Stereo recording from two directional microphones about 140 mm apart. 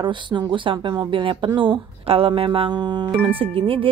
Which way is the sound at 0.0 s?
35° right (ahead or behind).